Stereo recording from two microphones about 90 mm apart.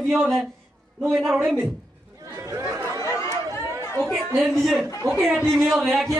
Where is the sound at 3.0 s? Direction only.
30° left (ahead or behind).